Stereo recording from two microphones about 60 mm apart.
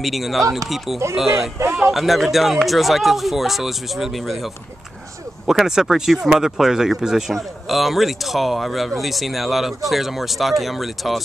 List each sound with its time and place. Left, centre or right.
0.0 s speech: centre
1.6 s speech: right
2.0 s speech: centre
5.5 s speech: centre